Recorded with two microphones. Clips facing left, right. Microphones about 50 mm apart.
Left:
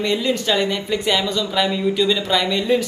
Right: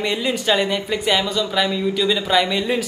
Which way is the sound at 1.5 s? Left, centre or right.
Centre.